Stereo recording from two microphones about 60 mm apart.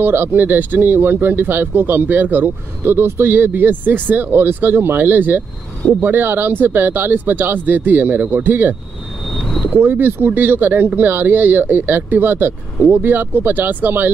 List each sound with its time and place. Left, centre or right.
0.0 s speech: right
9.8 s speech: right